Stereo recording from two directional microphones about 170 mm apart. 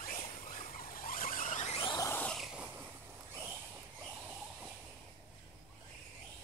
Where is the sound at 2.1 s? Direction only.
10° left (ahead or behind); by 2.9 s 10° right (ahead or behind).